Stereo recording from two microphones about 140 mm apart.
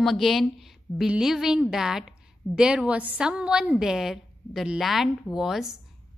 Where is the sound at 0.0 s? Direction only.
Centre (ahead or behind).